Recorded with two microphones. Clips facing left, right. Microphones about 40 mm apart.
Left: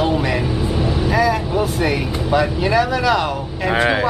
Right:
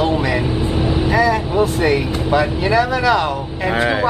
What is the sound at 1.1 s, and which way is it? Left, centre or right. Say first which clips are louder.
Speech: right 2 dB; centre.